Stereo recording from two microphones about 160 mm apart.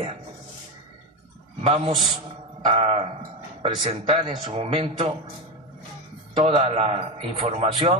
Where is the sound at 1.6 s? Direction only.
35° right (ahead or behind).